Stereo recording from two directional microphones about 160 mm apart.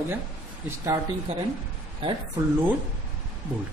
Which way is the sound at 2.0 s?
30° right (ahead or behind).